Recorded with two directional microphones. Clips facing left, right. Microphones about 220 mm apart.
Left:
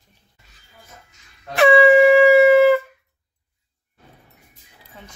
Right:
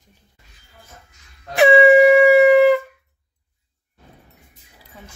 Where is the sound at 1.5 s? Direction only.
20° right (ahead or behind).